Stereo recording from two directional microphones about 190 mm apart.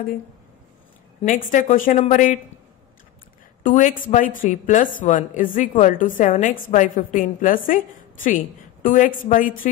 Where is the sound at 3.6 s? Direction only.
45° left (ahead or behind).